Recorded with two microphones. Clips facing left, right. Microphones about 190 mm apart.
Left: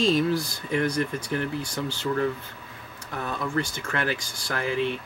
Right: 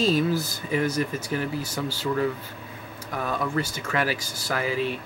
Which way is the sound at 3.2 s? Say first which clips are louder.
Right 1 dB; 5° right (ahead or behind).